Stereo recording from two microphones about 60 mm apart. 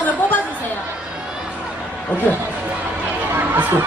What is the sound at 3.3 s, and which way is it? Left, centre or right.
Crowd, right.